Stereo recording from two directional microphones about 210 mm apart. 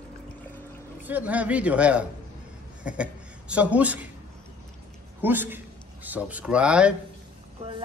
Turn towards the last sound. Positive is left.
turn(degrees=-30)  # may be behind; listen again after turning